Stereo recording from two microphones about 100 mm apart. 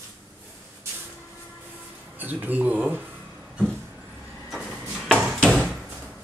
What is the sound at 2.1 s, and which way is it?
Speech, 15° right (ahead or behind).